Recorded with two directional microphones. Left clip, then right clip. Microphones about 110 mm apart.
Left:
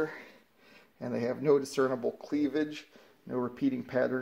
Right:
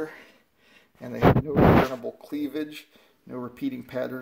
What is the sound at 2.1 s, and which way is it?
Speech, 25° left (ahead or behind).